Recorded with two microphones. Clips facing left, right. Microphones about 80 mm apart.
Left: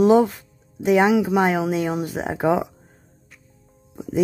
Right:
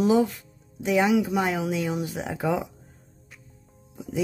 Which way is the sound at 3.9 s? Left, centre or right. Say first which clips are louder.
Left 7 dB; left.